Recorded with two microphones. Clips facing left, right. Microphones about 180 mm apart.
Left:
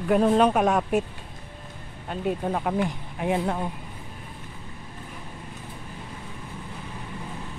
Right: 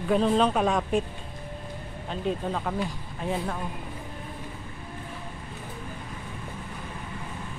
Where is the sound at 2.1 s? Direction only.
10° left (ahead or behind).